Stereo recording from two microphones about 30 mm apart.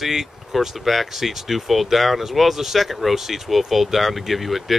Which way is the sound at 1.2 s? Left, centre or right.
Centre.